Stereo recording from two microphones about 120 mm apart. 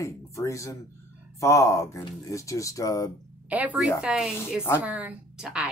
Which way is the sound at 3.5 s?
15° right (ahead or behind).